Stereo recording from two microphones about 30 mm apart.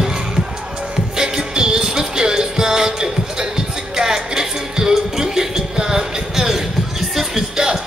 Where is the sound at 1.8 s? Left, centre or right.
Centre.